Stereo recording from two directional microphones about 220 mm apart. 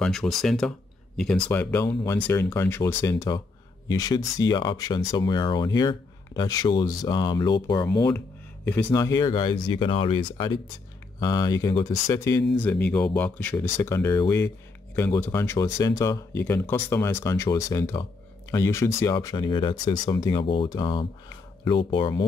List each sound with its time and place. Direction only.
0.0 s speech: centre (ahead or behind); by 22.2 s 20° left (ahead or behind)